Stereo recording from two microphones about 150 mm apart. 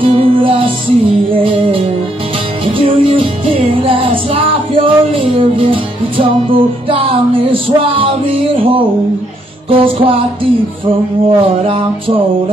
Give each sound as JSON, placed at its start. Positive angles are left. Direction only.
{"t": 0.0, "sound": "music", "side_deg": -35}